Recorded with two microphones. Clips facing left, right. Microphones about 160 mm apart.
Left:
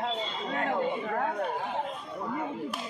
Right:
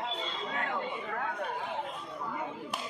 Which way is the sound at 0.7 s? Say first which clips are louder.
Left 6 dB; 40° left (ahead or behind).